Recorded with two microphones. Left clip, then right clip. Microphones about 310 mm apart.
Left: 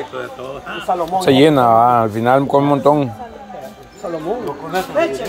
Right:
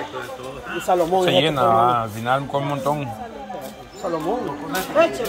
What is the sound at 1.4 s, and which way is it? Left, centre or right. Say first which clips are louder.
Speech: left 6 dB; left.